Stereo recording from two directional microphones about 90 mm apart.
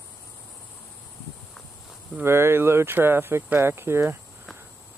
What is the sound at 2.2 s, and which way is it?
Speech, 30° right (ahead or behind).